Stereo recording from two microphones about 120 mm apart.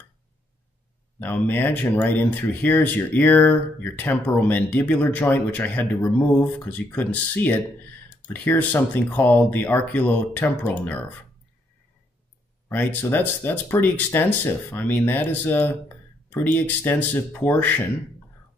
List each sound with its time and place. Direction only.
1.2 s speech: 15° left (ahead or behind)
12.6 s speech: 15° left (ahead or behind)